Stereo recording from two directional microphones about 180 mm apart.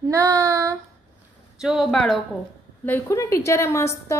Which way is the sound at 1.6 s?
Centre (ahead or behind).